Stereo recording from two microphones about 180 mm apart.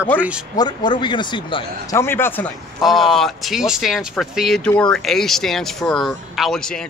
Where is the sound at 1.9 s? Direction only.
15° left (ahead or behind).